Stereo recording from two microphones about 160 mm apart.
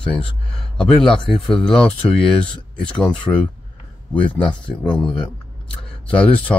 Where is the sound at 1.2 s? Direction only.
5° left (ahead or behind).